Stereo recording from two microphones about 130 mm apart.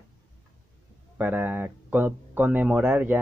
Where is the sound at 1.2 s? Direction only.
15° right (ahead or behind).